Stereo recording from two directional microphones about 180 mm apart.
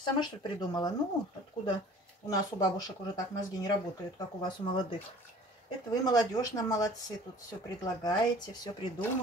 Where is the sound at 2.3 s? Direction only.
20° left (ahead or behind).